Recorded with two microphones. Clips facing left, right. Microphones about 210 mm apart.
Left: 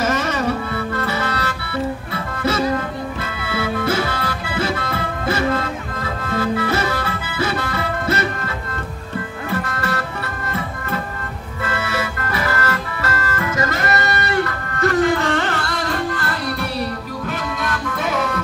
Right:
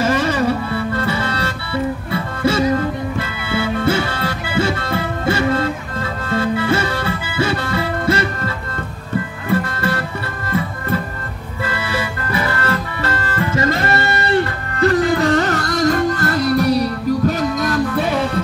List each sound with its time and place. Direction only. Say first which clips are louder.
0.0 s music: right 3 dB; 30° right (ahead or behind)
9.5 s music: right 5 dB; 30° right (ahead or behind)
11.6 s music: right 1 dB; 30° right (ahead or behind)